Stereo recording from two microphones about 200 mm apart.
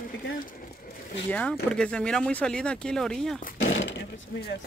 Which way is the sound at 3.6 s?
70° left (ahead or behind).